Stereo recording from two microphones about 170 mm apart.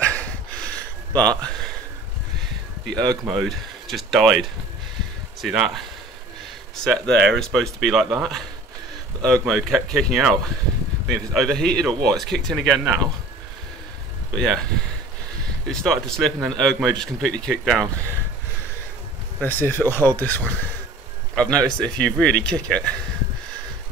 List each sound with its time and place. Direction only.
0.0 s a sound: 10° left (ahead or behind)
3.0 s speech: centre (ahead or behind)
7.1 s speech: 90° right
7.3 s speech: centre (ahead or behind)
14.3 s speech: centre (ahead or behind)
15.6 s speech: 5° left (ahead or behind)
19.4 s speech: 10° left (ahead or behind)